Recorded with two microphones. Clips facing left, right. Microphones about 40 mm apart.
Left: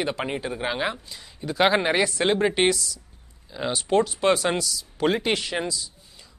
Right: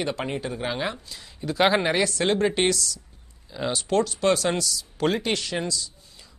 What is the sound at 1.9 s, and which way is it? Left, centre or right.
Speech, centre.